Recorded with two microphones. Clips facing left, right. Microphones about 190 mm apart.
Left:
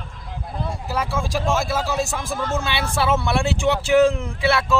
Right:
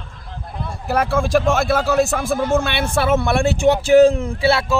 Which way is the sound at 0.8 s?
60° right (ahead or behind).